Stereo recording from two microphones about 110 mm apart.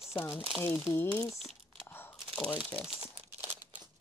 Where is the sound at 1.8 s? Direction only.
20° left (ahead or behind).